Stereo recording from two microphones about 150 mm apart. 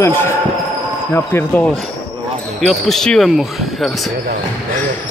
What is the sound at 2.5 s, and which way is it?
Speech, centre (ahead or behind).